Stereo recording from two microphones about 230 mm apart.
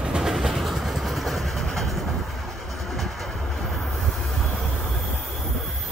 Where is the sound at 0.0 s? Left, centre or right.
Centre.